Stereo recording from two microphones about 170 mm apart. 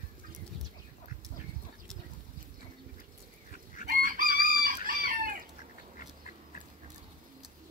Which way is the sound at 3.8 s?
55° right (ahead or behind).